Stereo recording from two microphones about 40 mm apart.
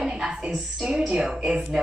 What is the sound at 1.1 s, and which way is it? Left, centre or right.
Speech, right.